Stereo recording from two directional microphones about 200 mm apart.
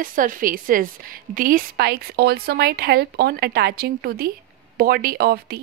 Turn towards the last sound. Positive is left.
turn(degrees=-50)  # may be behind; listen again after turning